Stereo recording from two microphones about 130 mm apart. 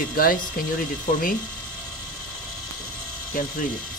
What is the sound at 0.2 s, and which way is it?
Speech, 90° left.